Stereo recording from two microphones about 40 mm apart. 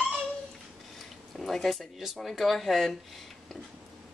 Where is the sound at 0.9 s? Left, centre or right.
Centre.